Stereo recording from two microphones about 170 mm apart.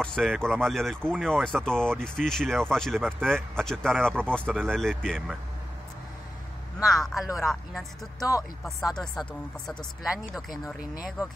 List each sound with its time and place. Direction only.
0.0 s speech: centre (ahead or behind)
6.9 s speech: centre (ahead or behind)
8.2 s speech: 20° left (ahead or behind)
8.6 s speech: centre (ahead or behind)